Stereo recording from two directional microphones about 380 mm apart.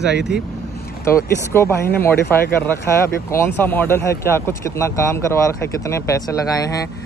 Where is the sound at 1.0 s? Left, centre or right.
Centre.